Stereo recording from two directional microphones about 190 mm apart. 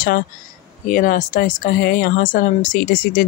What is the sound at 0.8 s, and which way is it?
Speech, 45° left (ahead or behind).